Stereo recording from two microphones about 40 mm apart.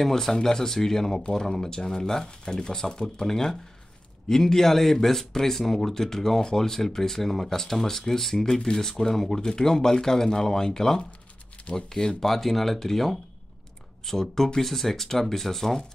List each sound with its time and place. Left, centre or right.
0.0 s speech: centre
11.1 s a sound: left
11.7 s speech: centre
12.3 s speech: centre